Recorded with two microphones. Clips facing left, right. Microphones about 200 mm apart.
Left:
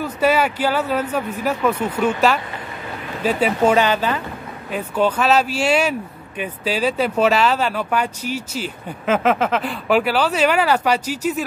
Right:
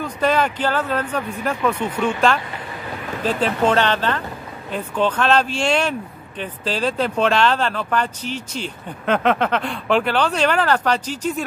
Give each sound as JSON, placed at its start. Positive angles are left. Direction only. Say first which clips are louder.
{"t": 0.0, "sound": "speech", "louder": "left 2 dB", "side_deg": 10}